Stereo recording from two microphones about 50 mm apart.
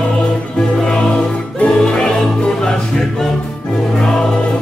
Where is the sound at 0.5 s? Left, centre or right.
Centre.